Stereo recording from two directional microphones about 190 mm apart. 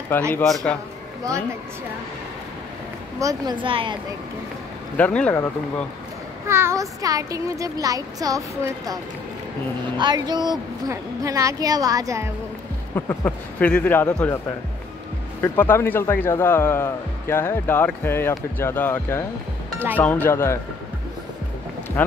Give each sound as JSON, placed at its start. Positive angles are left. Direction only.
{"t": 0.3, "sound": "a man's voice", "side_deg": 5}
{"t": 3.2, "sound": "a woman's voice", "side_deg": -20}
{"t": 4.9, "sound": "speech", "side_deg": 5}
{"t": 6.4, "sound": "a woman's voice", "side_deg": -15}
{"t": 12.9, "sound": "speech", "side_deg": 10}
{"t": 15.4, "sound": "speech", "side_deg": 10}